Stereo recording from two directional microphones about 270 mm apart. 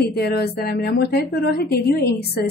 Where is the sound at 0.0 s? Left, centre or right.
Left.